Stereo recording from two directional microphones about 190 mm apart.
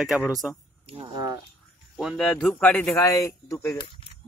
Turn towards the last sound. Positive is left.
turn(degrees=15)  # may be behind; listen again after turning